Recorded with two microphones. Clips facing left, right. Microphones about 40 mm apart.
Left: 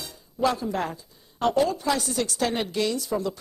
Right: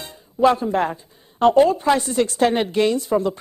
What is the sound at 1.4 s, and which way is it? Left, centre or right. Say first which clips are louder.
A woman's voice: right 8 dB; right.